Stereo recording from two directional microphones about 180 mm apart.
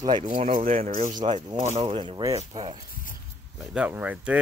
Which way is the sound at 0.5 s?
50° right (ahead or behind).